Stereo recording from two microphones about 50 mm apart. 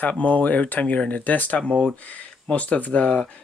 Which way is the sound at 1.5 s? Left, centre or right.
Left.